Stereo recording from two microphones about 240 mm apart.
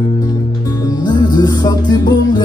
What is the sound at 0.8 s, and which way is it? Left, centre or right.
Music, centre.